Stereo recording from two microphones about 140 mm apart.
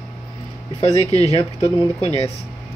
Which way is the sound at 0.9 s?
50° left (ahead or behind).